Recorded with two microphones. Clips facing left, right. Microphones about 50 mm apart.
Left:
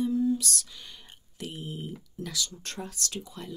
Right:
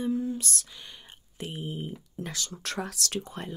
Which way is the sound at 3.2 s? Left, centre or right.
Right.